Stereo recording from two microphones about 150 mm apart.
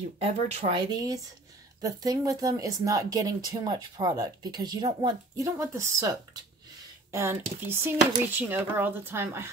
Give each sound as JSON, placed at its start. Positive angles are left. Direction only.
{"t": 0.2, "sound": "speech", "side_deg": -40}